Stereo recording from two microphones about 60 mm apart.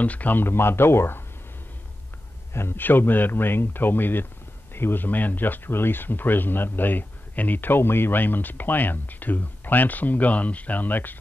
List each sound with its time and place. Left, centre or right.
0.0 s speech: left
2.5 s speech: left